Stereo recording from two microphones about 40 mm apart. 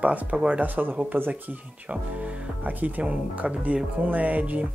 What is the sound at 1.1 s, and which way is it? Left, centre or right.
Speech, right.